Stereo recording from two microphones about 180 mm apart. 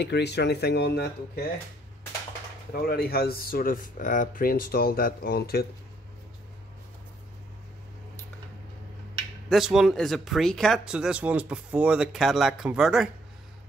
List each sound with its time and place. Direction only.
0.0 s speech: 70° left (ahead or behind)
2.7 s speech: 60° left (ahead or behind)
9.5 s speech: 5° right (ahead or behind)